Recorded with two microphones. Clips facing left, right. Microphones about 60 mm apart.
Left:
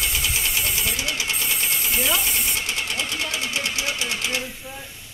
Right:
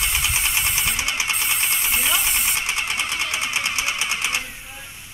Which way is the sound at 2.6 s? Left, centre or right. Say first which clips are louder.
Right 2 dB; right.